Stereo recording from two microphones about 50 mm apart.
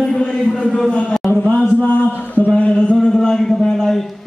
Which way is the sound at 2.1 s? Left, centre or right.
Right.